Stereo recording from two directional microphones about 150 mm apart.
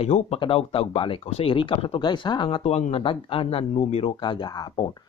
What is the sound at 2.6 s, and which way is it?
Speech, 45° left (ahead or behind).